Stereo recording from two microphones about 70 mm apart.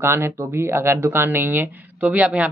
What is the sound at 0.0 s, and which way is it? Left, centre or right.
Speech, right.